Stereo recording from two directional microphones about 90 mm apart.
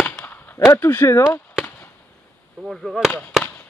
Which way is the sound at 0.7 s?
25° left (ahead or behind).